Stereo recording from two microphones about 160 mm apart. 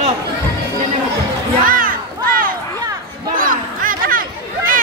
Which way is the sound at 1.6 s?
60° right (ahead or behind).